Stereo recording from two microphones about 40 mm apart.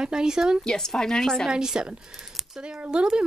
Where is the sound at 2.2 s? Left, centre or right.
Centre.